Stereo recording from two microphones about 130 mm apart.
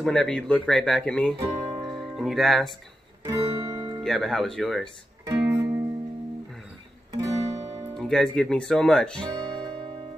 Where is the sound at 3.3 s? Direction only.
25° right (ahead or behind).